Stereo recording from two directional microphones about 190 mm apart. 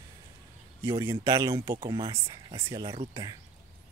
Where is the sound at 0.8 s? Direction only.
15° right (ahead or behind).